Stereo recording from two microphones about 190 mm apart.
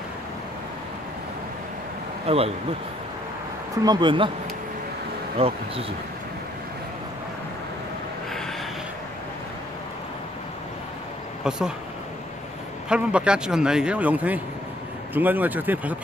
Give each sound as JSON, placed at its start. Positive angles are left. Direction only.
{"t": 2.2, "sound": "speech", "side_deg": -30}
{"t": 3.8, "sound": "speech", "side_deg": -25}
{"t": 5.4, "sound": "speech", "side_deg": -30}
{"t": 11.4, "sound": "speech", "side_deg": -5}
{"t": 12.9, "sound": "speech", "side_deg": -5}